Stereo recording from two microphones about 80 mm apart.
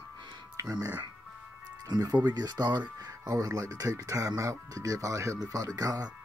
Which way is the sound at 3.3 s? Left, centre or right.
Right.